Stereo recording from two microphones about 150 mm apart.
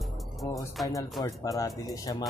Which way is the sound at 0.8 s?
Centre (ahead or behind).